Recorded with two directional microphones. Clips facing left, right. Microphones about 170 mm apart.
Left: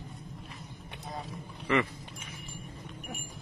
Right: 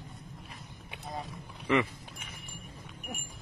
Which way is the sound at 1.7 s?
15° right (ahead or behind).